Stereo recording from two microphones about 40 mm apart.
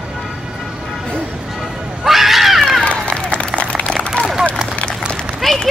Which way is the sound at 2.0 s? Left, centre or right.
Centre.